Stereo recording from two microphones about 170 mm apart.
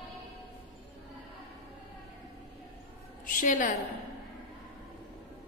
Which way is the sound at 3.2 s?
50° left (ahead or behind).